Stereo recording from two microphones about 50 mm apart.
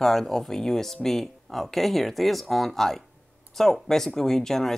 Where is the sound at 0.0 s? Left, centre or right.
Centre.